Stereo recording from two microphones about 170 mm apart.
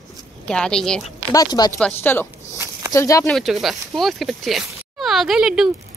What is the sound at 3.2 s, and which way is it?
Speech, centre (ahead or behind).